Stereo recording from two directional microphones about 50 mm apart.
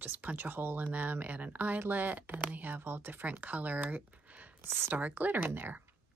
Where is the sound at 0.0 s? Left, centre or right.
Right.